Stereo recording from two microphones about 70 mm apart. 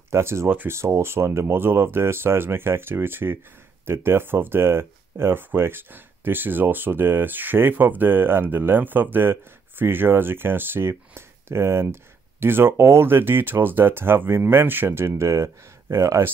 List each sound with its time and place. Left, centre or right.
0.1 s speech: right